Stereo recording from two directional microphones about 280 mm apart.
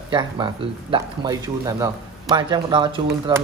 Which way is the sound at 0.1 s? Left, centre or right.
Centre.